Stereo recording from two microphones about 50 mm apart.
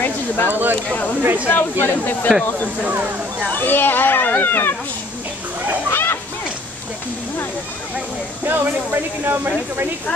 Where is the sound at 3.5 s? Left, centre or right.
Left.